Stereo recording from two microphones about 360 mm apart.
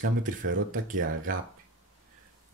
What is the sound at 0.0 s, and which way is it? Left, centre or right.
Speech, right.